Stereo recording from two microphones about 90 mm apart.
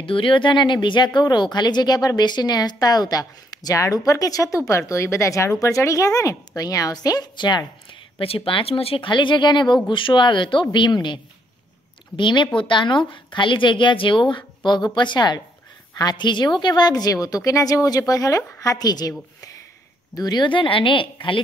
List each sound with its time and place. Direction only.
0.0 s speech: 75° left (ahead or behind); by 7.6 s 50° left (ahead or behind)
8.5 s a woman's voice: 85° left; by 11.1 s 60° left (ahead or behind)
12.2 s a woman's voice: 60° left (ahead or behind)
20.2 s speech: 50° left (ahead or behind); by 21.4 s 70° left (ahead or behind)